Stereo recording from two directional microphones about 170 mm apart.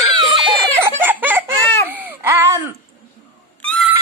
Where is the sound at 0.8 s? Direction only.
10° right (ahead or behind).